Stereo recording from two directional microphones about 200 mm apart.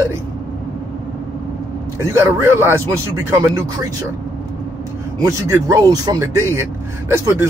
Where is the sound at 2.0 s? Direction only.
15° right (ahead or behind).